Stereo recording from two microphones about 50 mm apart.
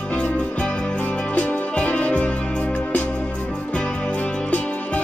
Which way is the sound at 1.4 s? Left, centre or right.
Left.